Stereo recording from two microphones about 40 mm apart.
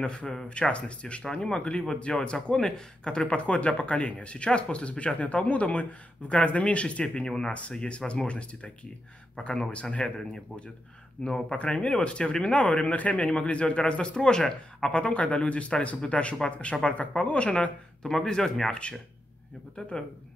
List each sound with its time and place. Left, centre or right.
0.0 s speech: left
7.2 s speech: centre
18.0 s speech: centre